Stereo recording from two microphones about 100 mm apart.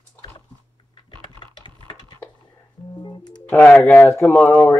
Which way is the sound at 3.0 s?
45° left (ahead or behind).